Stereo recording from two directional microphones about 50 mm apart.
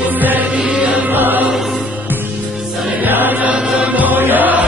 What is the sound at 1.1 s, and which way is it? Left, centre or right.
Music, right.